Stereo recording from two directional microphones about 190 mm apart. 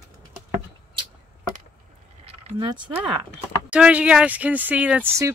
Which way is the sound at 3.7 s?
5° right (ahead or behind).